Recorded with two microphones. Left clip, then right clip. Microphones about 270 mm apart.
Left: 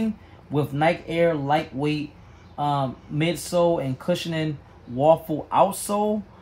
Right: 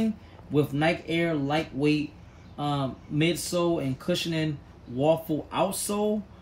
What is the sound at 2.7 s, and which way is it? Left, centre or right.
Speech, left.